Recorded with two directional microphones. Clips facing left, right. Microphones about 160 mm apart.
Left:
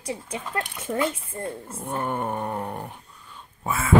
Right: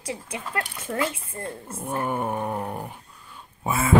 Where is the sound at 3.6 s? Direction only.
15° right (ahead or behind).